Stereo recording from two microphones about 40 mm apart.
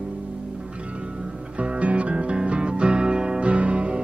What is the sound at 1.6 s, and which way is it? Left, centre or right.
Music, right.